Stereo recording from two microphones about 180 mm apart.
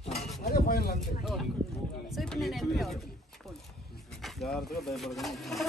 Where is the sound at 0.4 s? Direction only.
60° left (ahead or behind).